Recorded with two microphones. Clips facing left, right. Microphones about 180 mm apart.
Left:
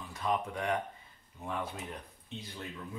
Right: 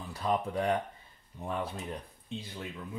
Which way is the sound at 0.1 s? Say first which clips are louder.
Right 3 dB; 35° right (ahead or behind).